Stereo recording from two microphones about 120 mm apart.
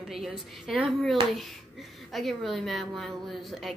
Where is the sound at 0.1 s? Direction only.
Centre (ahead or behind).